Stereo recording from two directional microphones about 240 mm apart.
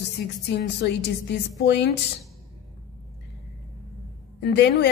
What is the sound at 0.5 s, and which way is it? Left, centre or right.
A woman's voice, left.